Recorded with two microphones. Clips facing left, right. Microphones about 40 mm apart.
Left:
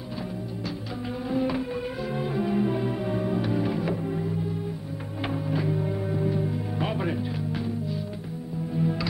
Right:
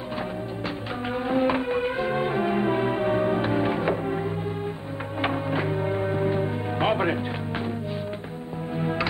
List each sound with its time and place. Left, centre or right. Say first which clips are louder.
1.3 s music: right 4 dB; right
8.7 s music: even; right